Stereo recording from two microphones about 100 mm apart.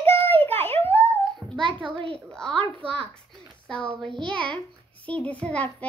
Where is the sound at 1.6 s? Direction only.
55° right (ahead or behind).